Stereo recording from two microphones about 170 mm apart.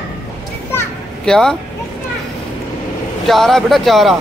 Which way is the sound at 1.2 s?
5° left (ahead or behind).